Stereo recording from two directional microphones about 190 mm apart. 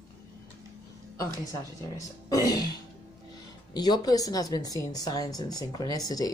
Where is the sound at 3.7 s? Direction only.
20° left (ahead or behind).